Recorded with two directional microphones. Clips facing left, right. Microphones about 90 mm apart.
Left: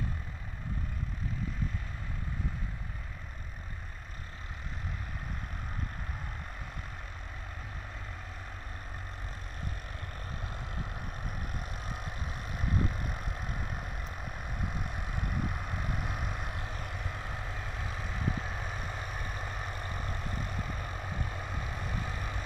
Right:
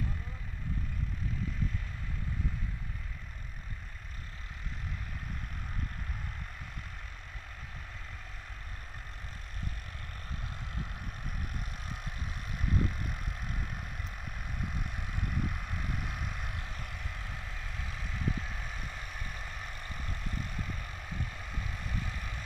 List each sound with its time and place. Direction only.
11.6 s vehicle: 30° left (ahead or behind)